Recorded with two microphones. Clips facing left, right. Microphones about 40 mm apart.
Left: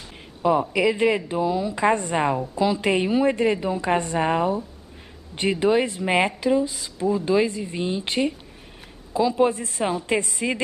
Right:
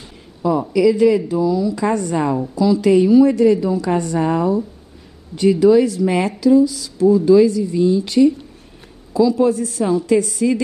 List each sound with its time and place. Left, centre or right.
0.4 s a woman's voice: left